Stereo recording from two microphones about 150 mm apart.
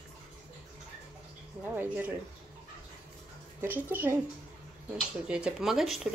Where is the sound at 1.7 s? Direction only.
10° right (ahead or behind).